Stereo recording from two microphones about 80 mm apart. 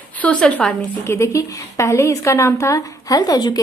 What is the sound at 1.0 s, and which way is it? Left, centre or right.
A woman's voice, left.